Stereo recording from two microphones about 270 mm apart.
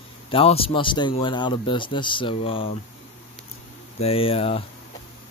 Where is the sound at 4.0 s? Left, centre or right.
Left.